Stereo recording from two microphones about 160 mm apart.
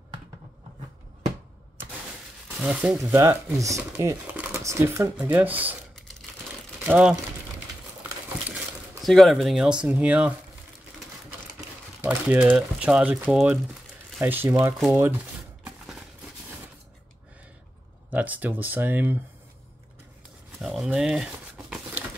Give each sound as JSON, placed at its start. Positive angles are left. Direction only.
{"t": 2.6, "sound": "speech", "side_deg": -10}
{"t": 3.2, "sound": "speech", "side_deg": -20}
{"t": 5.9, "sound": "a sound", "side_deg": 5}
{"t": 6.9, "sound": "speech", "side_deg": -5}
{"t": 9.0, "sound": "speech", "side_deg": 0}
{"t": 12.0, "sound": "speech", "side_deg": -10}
{"t": 14.9, "sound": "a sound", "side_deg": -15}
{"t": 18.1, "sound": "speech", "side_deg": -10}
{"t": 20.5, "sound": "a sound", "side_deg": 0}